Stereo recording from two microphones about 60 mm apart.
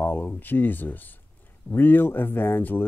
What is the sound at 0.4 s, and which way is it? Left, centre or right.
Speech, left.